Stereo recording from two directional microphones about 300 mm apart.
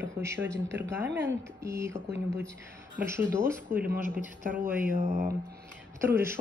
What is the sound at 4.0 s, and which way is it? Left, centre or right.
Speech, left.